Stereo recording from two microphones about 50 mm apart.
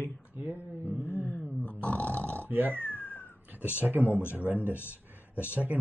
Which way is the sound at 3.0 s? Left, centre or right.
Left.